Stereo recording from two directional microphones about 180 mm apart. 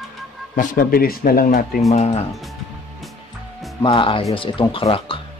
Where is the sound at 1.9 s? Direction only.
35° left (ahead or behind).